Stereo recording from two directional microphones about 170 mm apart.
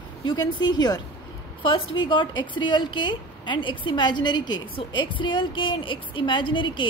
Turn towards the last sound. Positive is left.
turn(degrees=30)  # may be behind; listen again after turning